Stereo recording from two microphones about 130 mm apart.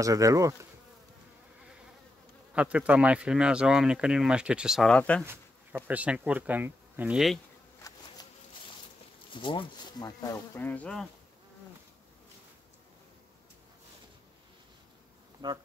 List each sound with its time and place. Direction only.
0.0 s bee: 25° right (ahead or behind)
2.5 s speech: 10° right (ahead or behind)
4.8 s speech: 10° left (ahead or behind)
5.2 s a sound: 20° right (ahead or behind)
5.9 s speech: 10° right (ahead or behind)
7.8 s insect: 25° left (ahead or behind)
9.3 s speech: 40° left (ahead or behind)
10.6 s speech: 10° left (ahead or behind)
15.4 s speech: 35° right (ahead or behind)